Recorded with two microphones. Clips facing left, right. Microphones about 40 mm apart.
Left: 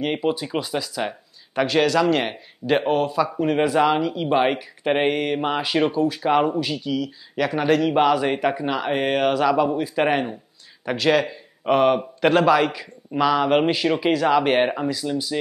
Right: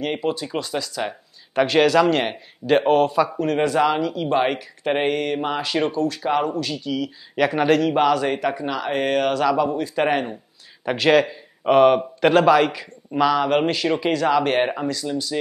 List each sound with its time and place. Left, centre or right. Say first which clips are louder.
0.0 s speech: left 1 dB; centre
1.6 s speech: right 3 dB; centre
3.3 s speech: even; centre
7.0 s speech: right 3 dB; centre
7.6 s speech: left 1 dB; centre
10.9 s speech: right 3 dB; centre